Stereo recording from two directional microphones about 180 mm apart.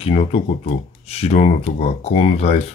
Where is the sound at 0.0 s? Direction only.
35° left (ahead or behind).